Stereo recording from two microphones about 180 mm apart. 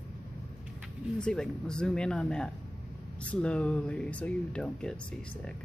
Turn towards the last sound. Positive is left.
turn(degrees=5)  # may be behind; listen again after turning